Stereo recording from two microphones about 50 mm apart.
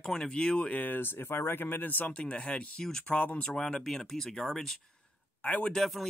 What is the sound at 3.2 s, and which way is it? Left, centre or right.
Speech, left.